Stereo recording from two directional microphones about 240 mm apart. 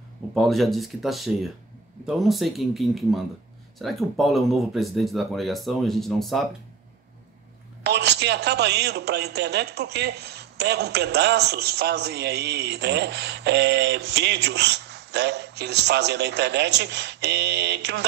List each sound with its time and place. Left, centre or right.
0.3 s speech: centre
7.8 s speech: right